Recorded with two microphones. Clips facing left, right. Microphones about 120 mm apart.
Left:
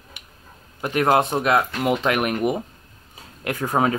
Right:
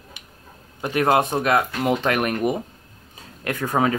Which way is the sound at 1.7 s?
10° left (ahead or behind).